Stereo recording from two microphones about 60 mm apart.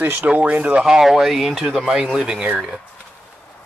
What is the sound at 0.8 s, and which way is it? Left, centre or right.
Speech, centre.